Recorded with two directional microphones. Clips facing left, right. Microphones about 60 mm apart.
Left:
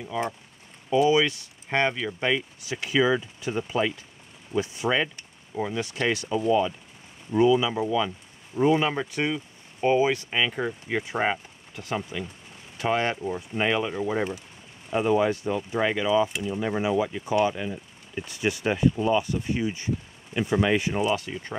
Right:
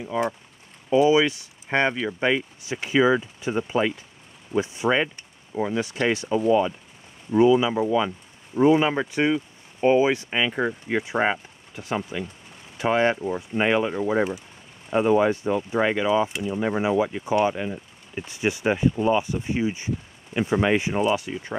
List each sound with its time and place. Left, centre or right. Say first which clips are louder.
0.8 s speech: right 3 dB; right
21.0 s speech: right 3 dB; centre